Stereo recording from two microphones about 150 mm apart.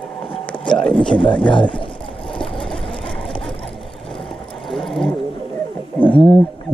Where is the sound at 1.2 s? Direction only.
35° left (ahead or behind).